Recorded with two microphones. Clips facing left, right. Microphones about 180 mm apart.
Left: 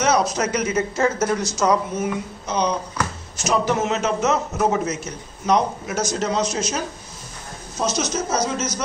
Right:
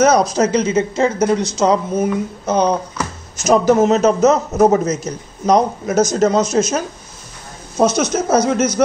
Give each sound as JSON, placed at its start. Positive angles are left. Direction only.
{"t": 0.0, "sound": "a woman's voice", "side_deg": -40}
{"t": 2.4, "sound": "a man's voice", "side_deg": -50}